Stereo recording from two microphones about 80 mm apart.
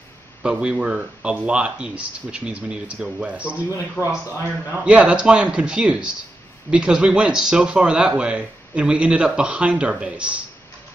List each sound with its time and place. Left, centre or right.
0.4 s speech: centre
4.0 s speech: left
4.8 s speech: centre